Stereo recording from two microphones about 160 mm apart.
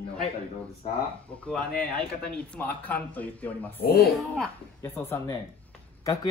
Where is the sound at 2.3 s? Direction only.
10° left (ahead or behind).